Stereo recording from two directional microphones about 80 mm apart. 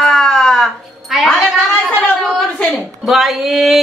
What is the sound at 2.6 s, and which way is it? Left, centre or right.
Speech, centre.